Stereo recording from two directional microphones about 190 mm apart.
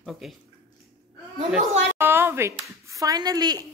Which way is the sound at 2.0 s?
10° right (ahead or behind).